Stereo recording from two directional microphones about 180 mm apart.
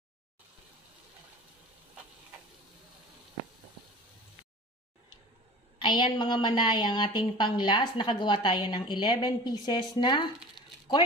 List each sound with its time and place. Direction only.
5.8 s a woman's voice: 25° left (ahead or behind)